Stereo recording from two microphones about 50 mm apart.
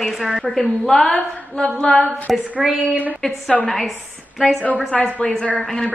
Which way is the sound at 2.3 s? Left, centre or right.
Centre.